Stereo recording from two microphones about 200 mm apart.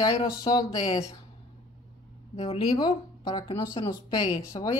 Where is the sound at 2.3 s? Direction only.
30° left (ahead or behind).